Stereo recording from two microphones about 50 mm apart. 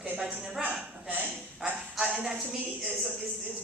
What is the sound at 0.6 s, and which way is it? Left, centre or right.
Speech, right.